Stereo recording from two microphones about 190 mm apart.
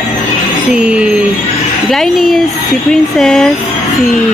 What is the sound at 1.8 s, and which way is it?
Speech, centre (ahead or behind).